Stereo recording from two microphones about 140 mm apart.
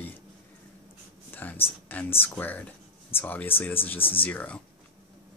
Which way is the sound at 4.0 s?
40° left (ahead or behind).